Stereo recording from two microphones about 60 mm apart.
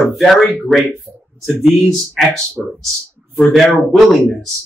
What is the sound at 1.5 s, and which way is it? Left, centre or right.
Speech, centre.